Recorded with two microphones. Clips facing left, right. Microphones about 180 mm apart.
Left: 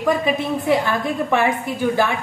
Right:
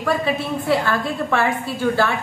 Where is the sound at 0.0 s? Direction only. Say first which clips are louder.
Left 2 dB; 15° left (ahead or behind).